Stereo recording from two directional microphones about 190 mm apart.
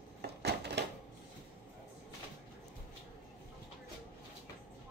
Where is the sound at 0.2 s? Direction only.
60° right (ahead or behind).